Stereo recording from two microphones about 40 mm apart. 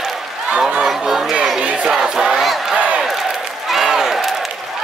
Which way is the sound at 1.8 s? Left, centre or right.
Centre.